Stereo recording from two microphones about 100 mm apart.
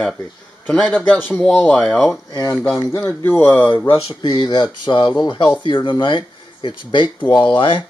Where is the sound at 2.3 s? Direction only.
35° left (ahead or behind).